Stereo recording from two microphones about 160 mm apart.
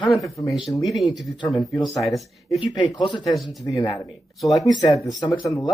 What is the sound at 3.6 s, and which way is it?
Speech, 20° left (ahead or behind).